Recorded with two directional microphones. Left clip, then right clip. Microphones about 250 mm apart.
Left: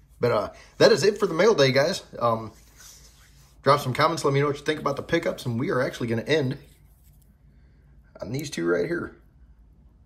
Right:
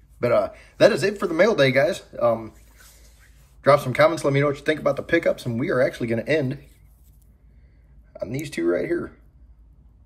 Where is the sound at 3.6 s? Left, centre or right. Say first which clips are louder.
Right 4 dB; centre.